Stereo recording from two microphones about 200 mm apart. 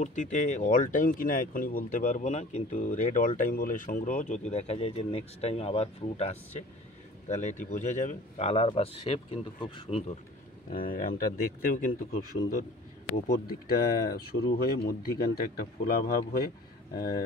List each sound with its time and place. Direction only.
0.0 s speech: 35° left (ahead or behind)
10.7 s speech: 45° left (ahead or behind)
13.3 s speech: 50° left (ahead or behind)